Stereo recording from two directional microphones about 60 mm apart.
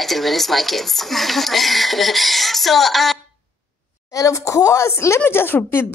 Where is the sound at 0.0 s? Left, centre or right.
Centre.